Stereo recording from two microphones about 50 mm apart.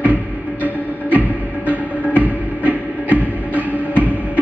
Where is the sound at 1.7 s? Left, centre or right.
Right.